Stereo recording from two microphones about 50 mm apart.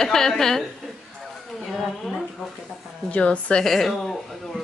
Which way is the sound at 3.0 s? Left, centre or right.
Left.